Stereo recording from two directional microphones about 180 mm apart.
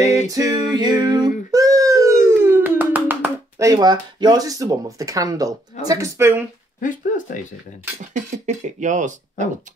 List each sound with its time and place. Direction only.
0.3 s a sound: 20° right (ahead or behind)
5.8 s speech: 20° right (ahead or behind)
6.8 s speech: 45° left (ahead or behind)
8.1 s speech: 40° right (ahead or behind)